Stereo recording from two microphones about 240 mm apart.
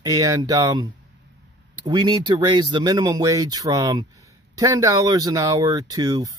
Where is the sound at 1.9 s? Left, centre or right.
Centre.